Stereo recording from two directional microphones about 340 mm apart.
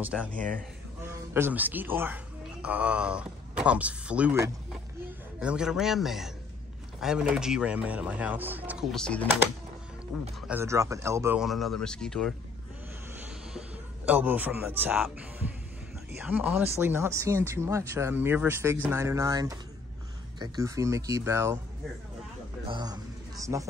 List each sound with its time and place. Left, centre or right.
0.0 s speech: centre
0.4 s a man's voice: right
1.0 s speech: centre
10.4 s speech: centre
13.5 s speech: centre
22.7 s speech: centre